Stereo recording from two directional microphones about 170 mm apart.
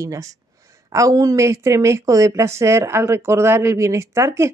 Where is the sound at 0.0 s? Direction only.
20° right (ahead or behind).